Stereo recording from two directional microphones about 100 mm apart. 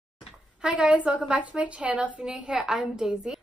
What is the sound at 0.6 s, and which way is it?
A woman's voice, 10° right (ahead or behind).